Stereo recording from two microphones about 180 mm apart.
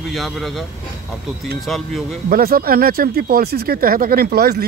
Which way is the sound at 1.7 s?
Centre (ahead or behind).